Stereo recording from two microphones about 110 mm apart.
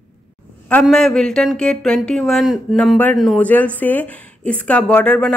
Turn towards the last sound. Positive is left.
turn(degrees=10)  # may be behind; listen again after turning